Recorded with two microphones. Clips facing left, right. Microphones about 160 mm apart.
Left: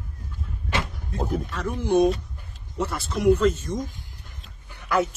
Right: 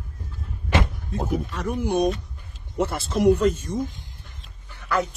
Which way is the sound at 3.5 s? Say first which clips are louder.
Right 2 dB; 10° right (ahead or behind).